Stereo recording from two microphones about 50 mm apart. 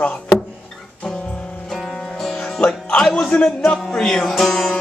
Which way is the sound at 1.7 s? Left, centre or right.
Centre.